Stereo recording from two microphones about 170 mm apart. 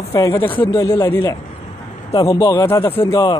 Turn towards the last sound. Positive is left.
turn(degrees=20)  # may be behind; listen again after turning